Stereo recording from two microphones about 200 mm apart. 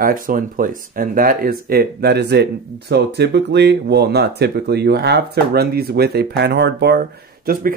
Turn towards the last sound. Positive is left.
turn(degrees=-50)  # may be behind; listen again after turning